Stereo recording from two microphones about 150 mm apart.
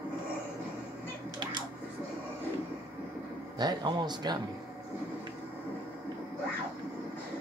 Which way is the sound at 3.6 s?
30° right (ahead or behind).